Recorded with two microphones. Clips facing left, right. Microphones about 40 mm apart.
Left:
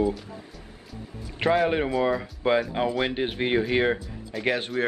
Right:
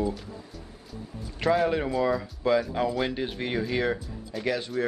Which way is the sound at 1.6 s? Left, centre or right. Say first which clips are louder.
Left 2 dB; left.